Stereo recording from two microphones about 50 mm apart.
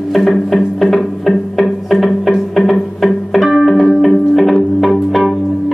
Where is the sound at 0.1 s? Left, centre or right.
Centre.